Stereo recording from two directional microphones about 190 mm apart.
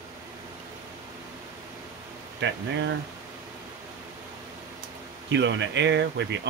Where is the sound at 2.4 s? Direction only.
70° right (ahead or behind).